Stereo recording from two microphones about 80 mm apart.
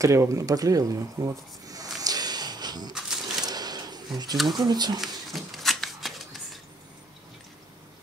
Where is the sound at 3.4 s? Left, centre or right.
Right.